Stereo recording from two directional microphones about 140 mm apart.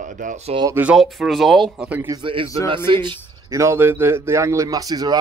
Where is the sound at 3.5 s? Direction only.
20° right (ahead or behind).